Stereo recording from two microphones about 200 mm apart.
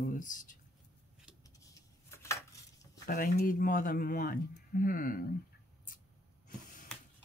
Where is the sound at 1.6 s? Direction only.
15° left (ahead or behind).